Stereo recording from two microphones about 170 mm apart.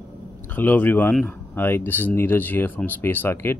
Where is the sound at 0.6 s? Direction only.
10° left (ahead or behind).